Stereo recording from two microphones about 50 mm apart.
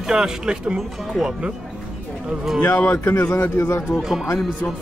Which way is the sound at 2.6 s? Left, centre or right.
Left.